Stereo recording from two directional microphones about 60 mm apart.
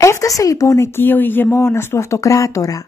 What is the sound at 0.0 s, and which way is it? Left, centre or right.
Speech, left.